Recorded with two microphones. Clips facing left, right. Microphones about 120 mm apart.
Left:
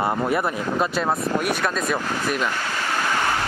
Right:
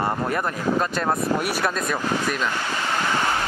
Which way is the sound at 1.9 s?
10° left (ahead or behind).